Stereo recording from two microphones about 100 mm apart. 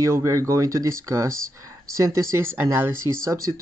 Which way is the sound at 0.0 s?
30° right (ahead or behind).